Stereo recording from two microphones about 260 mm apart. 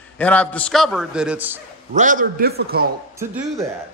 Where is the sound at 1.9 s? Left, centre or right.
Right.